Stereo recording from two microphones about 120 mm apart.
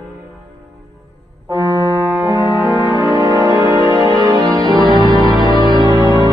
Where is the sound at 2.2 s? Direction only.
40° left (ahead or behind).